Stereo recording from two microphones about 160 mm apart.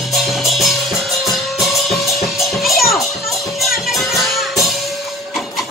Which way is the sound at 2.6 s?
Centre (ahead or behind).